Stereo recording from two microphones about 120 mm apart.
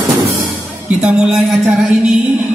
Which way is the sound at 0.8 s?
5° right (ahead or behind).